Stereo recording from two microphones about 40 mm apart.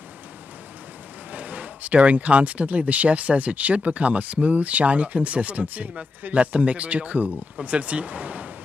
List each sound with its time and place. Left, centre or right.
1.3 s speech: right